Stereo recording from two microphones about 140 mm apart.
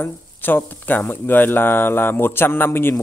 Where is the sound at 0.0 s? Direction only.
15° left (ahead or behind).